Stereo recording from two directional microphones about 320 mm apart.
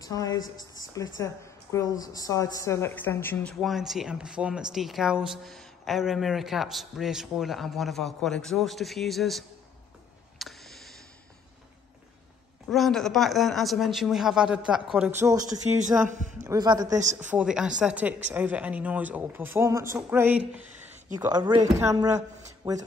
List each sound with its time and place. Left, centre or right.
0.0 s a woman's voice: centre
0.7 s a sound: centre
1.2 s a woman's voice: centre
10.4 s a sound: centre
12.6 s speech: centre
16.1 s a man's voice: right
16.4 s speech: centre